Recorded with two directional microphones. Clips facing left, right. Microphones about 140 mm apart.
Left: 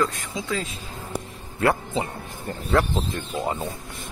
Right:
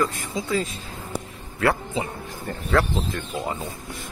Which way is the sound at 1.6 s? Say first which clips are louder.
Left 1 dB; 20° left (ahead or behind).